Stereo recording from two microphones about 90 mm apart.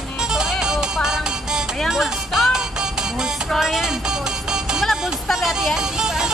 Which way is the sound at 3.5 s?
5° right (ahead or behind).